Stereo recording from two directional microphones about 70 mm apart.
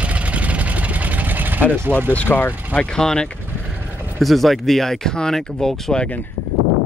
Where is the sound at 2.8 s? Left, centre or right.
Centre.